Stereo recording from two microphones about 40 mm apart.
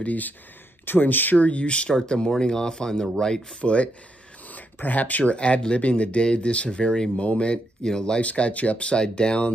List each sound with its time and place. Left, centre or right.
0.0 s speech: left
1.4 s speech: left; by 3.4 s centre
3.6 s speech: left
4.5 s a sound: left
5.3 s speech: left
8.2 s speech: left